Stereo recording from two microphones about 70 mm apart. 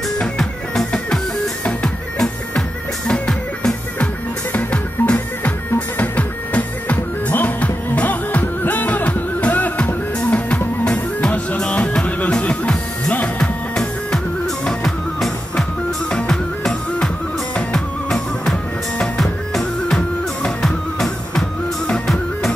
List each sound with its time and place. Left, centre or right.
0.2 s music: centre
4.5 s music: left; by 22.5 s centre